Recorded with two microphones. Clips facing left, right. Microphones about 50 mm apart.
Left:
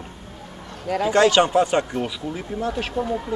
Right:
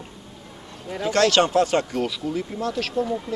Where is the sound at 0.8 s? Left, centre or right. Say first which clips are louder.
Left 5 dB; left.